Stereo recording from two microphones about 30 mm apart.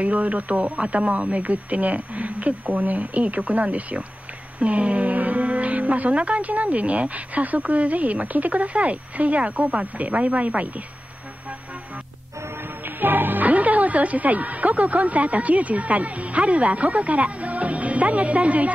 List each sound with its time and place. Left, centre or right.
0.0 s speech: right
13.0 s speech: right